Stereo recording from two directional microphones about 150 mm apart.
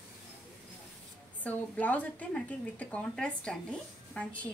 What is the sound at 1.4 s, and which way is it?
A woman's voice, 10° left (ahead or behind).